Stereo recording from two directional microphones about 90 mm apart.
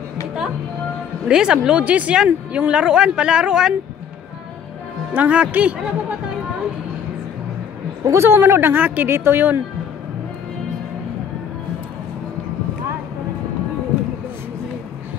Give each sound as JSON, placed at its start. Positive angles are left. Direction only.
{"t": 1.2, "sound": "speech", "side_deg": -10}
{"t": 5.1, "sound": "speech", "side_deg": -15}
{"t": 8.0, "sound": "speech", "side_deg": -30}